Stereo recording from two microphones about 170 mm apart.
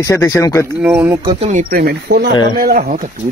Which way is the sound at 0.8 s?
15° right (ahead or behind).